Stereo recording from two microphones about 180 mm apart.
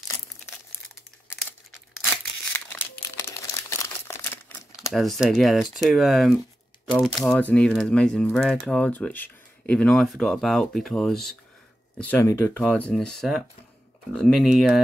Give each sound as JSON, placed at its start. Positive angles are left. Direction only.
{"t": 2.5, "sound": "crumpling", "side_deg": 15}
{"t": 4.9, "sound": "speech", "side_deg": 0}
{"t": 12.1, "sound": "speech", "side_deg": 15}